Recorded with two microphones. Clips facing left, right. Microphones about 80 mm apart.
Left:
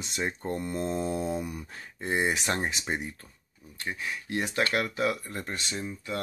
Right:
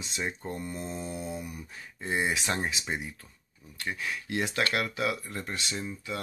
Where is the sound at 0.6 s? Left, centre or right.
Left.